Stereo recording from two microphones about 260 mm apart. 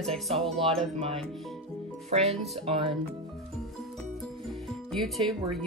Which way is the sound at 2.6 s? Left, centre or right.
Right.